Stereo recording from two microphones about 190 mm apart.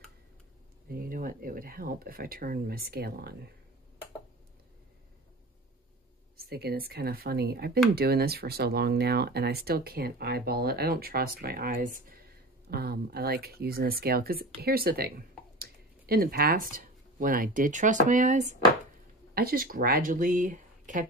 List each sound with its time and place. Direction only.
0.8 s speech: 45° right (ahead or behind)
6.3 s speech: 55° right (ahead or behind)